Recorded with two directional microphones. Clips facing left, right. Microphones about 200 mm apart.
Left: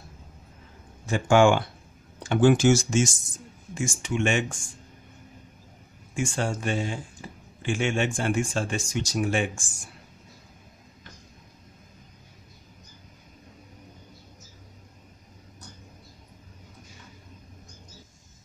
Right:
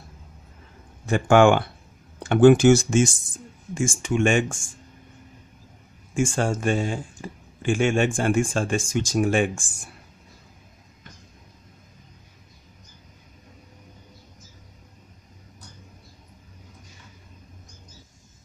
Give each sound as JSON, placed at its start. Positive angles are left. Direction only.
{"t": 1.0, "sound": "speech", "side_deg": -60}
{"t": 6.1, "sound": "speech", "side_deg": -50}